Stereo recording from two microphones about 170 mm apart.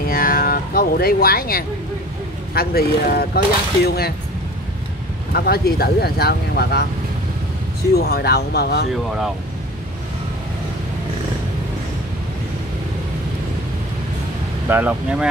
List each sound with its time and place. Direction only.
0.1 s music: 60° left (ahead or behind)
2.5 s speech: 65° left (ahead or behind)
5.3 s speech: 65° left (ahead or behind)
7.9 s speech: 65° left (ahead or behind)
14.7 s speech: 10° right (ahead or behind)